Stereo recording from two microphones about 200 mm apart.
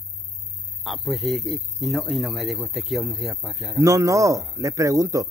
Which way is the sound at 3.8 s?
15° right (ahead or behind).